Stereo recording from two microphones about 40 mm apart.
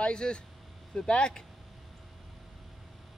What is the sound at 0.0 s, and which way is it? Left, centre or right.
Speech, left.